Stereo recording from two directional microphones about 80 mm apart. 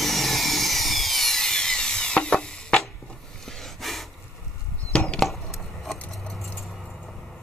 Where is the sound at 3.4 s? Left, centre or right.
Centre.